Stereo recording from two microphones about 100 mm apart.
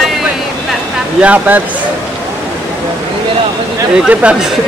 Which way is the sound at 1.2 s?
15° right (ahead or behind).